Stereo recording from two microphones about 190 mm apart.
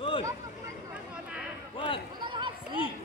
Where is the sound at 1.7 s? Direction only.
25° left (ahead or behind).